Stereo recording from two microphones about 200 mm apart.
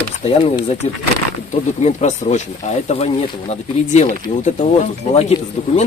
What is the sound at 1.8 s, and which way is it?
Speech, 35° left (ahead or behind).